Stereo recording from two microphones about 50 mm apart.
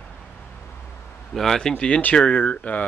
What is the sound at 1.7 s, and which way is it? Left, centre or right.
Speech, left.